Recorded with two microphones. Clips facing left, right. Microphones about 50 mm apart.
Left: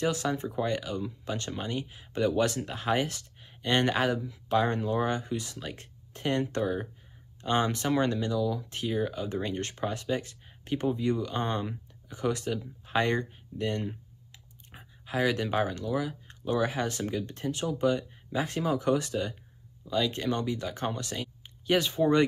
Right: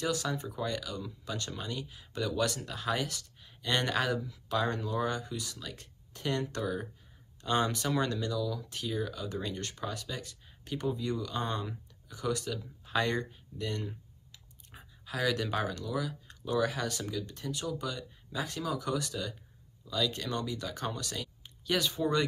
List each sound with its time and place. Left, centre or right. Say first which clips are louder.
0.0 s speech: left 4 dB; left